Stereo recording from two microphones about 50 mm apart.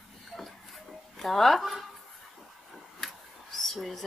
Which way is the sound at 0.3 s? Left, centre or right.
Centre.